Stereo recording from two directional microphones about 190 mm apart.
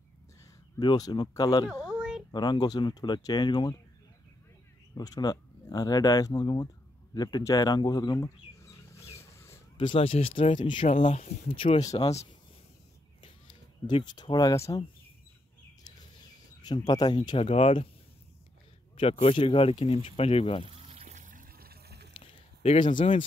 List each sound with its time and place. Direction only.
0.7 s speech: 20° left (ahead or behind)
1.7 s a sound: 5° right (ahead or behind)
2.3 s speech: 20° left (ahead or behind)
4.9 s speech: 20° left (ahead or behind)
7.2 s bird: 20° left (ahead or behind)
9.8 s speech: 30° left (ahead or behind)
10.8 s speech: 40° left (ahead or behind)
13.8 s speech: 25° left (ahead or behind)
16.6 s speech: 20° left (ahead or behind)
18.9 s speech: 30° left (ahead or behind)
20.7 s water: 30° right (ahead or behind); by 22.1 s 60° right (ahead or behind)
22.2 s a sound: 35° left (ahead or behind)